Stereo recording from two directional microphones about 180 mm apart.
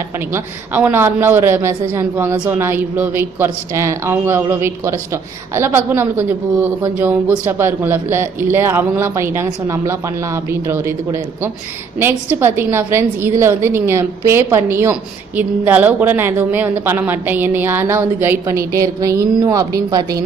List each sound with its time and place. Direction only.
0.3 s a woman's voice: 10° right (ahead or behind)